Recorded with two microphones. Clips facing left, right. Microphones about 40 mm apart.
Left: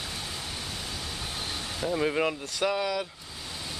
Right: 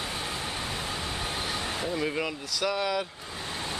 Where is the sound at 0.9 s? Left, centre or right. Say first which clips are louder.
Right 4 dB; right.